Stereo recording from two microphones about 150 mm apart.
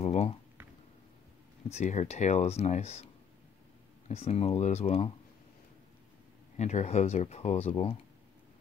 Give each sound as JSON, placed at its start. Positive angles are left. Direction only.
{"t": 0.0, "sound": "a sound", "side_deg": 45}
{"t": 1.7, "sound": "speech", "side_deg": 50}
{"t": 4.1, "sound": "speech", "side_deg": 40}
{"t": 6.5, "sound": "speech", "side_deg": 50}